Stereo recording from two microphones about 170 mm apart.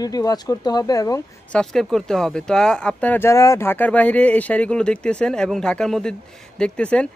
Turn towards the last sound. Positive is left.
turn(degrees=5)  # may be behind; listen again after turning